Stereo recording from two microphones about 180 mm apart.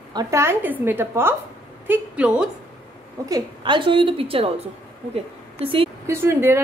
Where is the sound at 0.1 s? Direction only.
20° right (ahead or behind).